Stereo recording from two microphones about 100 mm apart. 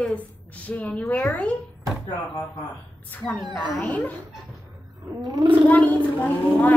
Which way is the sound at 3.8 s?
15° left (ahead or behind).